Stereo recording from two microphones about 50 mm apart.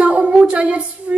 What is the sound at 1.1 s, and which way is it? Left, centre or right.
Music, right.